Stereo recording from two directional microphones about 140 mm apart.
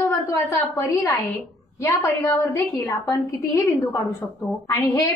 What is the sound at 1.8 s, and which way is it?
A woman's voice, 20° left (ahead or behind).